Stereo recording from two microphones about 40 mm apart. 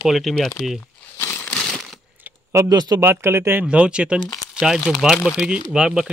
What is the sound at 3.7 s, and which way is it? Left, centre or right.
Speech, right.